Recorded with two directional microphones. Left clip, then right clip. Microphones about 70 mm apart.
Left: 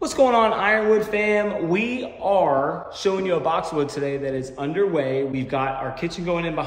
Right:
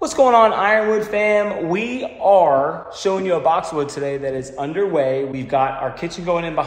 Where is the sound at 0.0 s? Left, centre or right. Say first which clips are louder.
Right 5 dB; centre.